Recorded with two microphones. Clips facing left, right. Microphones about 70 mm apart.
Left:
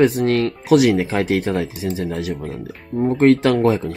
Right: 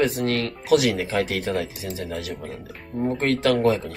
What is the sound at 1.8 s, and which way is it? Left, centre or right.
Speech, centre.